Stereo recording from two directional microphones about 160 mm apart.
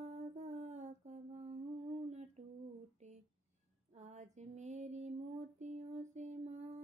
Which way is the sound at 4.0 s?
45° right (ahead or behind).